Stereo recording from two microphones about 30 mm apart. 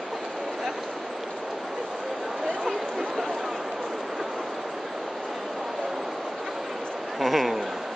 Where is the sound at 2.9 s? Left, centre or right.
Centre.